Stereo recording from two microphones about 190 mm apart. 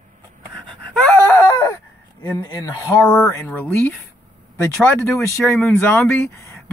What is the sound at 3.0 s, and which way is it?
Speech, 10° left (ahead or behind).